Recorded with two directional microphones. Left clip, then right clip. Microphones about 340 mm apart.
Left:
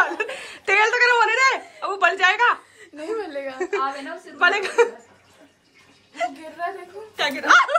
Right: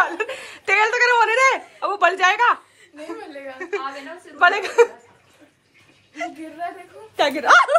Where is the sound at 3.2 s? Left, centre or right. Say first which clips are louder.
Left 6 dB; left.